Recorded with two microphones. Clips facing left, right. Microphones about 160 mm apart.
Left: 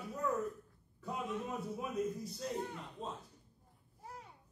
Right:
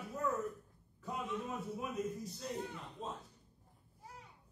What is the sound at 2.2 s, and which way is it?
Speech, centre (ahead or behind).